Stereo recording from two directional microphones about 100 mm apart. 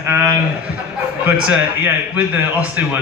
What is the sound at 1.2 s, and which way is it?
A man's voice, 10° right (ahead or behind).